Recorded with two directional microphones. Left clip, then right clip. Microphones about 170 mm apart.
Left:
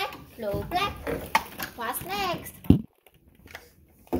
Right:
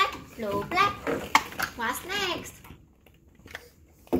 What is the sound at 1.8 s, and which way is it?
Speech, 15° right (ahead or behind).